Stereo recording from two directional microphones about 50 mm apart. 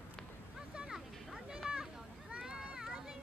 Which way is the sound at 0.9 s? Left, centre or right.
Centre.